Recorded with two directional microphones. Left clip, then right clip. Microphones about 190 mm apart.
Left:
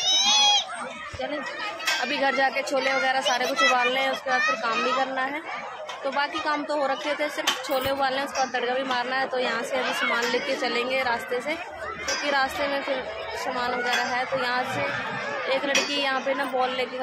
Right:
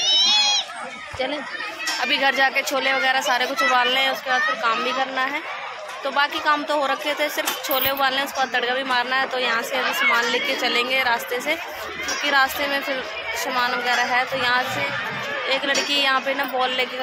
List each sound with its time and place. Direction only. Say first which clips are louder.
0.0 s run: right 3 dB; 55° left (ahead or behind)
2.0 s a woman's voice: right 6 dB; 10° left (ahead or behind)